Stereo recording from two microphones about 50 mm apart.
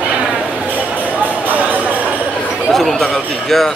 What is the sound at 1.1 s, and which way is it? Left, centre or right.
Music, right.